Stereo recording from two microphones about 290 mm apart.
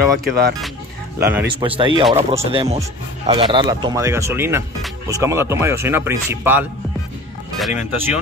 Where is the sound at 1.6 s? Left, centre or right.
Centre.